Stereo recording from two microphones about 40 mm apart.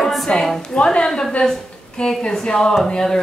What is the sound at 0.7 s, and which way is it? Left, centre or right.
A woman's voice, left.